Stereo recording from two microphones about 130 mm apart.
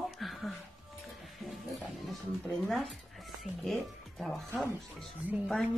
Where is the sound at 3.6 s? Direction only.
Centre (ahead or behind).